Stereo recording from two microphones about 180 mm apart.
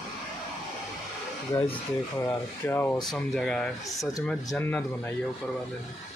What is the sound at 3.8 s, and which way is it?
Speech, 20° left (ahead or behind).